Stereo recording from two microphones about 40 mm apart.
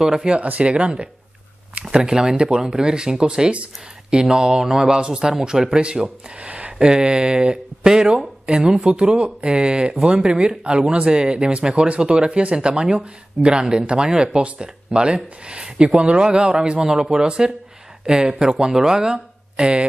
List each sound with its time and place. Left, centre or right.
0.0 s speech: centre
0.4 s speech: right
2.0 s speech: centre
6.4 s a sound: right
6.8 s speech: right